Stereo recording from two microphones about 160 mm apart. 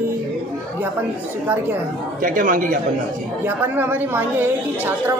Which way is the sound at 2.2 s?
55° right (ahead or behind).